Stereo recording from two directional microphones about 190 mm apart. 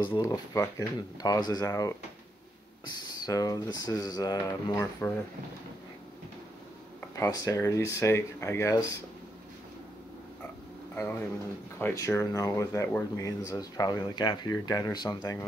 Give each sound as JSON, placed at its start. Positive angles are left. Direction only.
{"t": 0.1, "sound": "speech", "side_deg": 20}
{"t": 3.3, "sound": "speech", "side_deg": 20}
{"t": 7.0, "sound": "speech", "side_deg": 20}
{"t": 11.0, "sound": "speech", "side_deg": 10}